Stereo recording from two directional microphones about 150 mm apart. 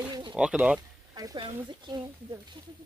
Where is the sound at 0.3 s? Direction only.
5° right (ahead or behind).